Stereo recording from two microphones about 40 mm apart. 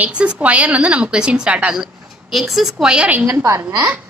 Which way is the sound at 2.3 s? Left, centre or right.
Centre.